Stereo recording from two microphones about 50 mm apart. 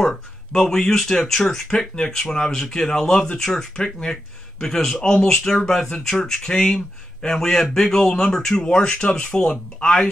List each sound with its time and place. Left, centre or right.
0.0 s speech: centre
1.7 s speech: centre